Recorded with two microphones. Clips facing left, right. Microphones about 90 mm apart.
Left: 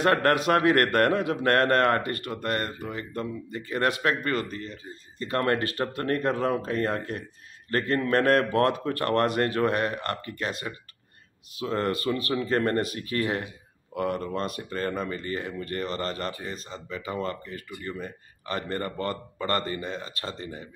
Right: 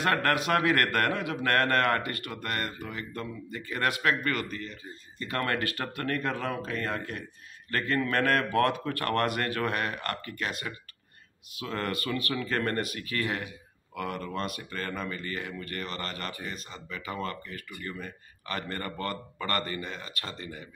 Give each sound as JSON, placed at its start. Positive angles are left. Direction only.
{"t": 0.0, "sound": "a man's voice", "side_deg": 35}